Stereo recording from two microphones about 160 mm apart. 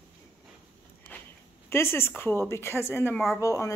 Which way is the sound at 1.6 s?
15° left (ahead or behind).